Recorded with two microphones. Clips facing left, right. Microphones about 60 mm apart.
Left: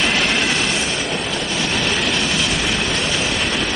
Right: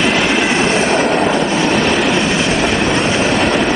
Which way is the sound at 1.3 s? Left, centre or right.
Right.